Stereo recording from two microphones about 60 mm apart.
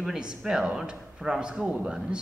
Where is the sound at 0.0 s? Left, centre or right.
Centre.